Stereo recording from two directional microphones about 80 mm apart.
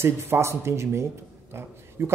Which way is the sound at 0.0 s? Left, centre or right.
Right.